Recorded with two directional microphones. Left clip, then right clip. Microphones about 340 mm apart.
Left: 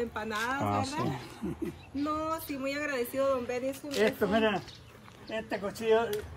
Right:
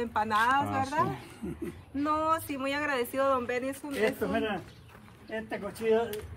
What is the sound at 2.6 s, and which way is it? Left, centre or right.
Speech, centre.